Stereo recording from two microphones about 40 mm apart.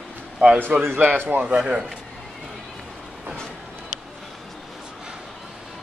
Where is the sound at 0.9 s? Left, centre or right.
Right.